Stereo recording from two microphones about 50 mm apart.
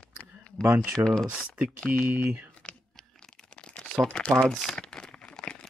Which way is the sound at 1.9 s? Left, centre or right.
Right.